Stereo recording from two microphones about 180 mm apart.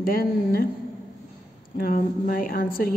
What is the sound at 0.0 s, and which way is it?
Speech, 55° left (ahead or behind).